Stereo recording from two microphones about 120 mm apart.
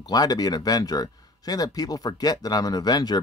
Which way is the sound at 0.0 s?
35° left (ahead or behind).